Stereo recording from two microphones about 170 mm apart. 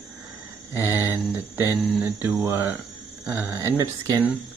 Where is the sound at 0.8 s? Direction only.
15° right (ahead or behind).